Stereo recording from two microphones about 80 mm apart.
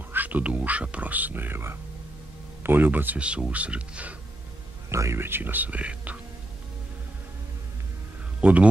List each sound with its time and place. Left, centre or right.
0.1 s speech: right
4.8 s speech: right; by 6.1 s centre
8.4 s speech: centre